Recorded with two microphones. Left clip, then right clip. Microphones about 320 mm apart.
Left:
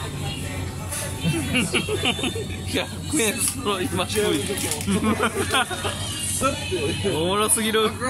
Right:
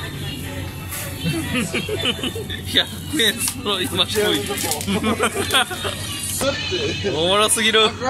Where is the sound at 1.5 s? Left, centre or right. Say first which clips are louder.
Left 2 dB; centre.